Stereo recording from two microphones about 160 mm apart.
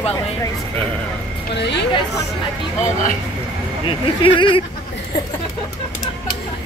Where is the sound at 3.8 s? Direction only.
30° left (ahead or behind).